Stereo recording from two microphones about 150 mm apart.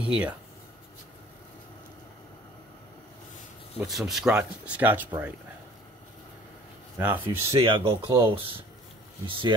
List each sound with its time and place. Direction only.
0.0 s speech: 5° right (ahead or behind)
3.7 s speech: 5° right (ahead or behind)
7.0 s speech: 15° right (ahead or behind)
7.5 s speech: 35° right (ahead or behind)